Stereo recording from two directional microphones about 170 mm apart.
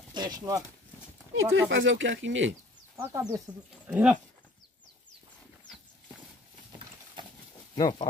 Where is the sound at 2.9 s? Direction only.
5° right (ahead or behind).